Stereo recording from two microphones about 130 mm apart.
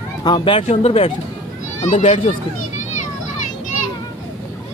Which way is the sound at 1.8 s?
65° left (ahead or behind).